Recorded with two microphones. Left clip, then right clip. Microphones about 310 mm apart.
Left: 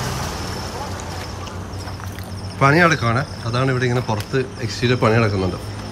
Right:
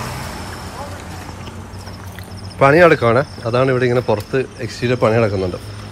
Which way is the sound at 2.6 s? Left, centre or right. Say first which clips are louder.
Right 5 dB; centre.